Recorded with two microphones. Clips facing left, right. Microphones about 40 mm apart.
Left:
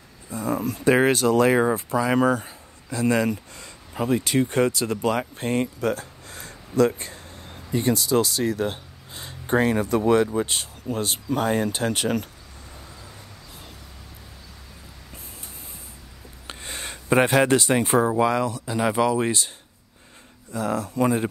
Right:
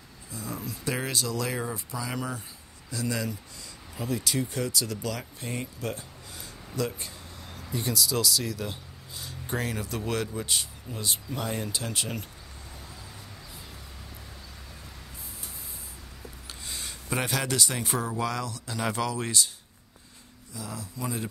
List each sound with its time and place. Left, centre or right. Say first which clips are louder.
0.3 s speech: left 11 dB; left
16.4 s speech: left 6 dB; left
20.5 s speech: left 14 dB; left